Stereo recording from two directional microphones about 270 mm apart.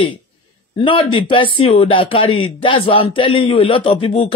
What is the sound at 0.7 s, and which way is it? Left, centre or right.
Speech, centre.